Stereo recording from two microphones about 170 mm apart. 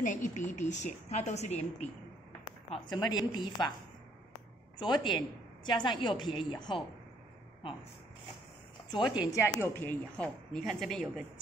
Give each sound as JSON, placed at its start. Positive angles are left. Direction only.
{"t": 0.0, "sound": "a woman's voice", "side_deg": 45}
{"t": 2.9, "sound": "a woman's voice", "side_deg": 25}
{"t": 4.7, "sound": "a woman's voice", "side_deg": 25}
{"t": 9.2, "sound": "a woman's voice", "side_deg": 15}